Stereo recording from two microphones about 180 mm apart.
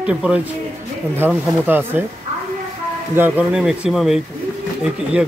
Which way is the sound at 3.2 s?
10° right (ahead or behind).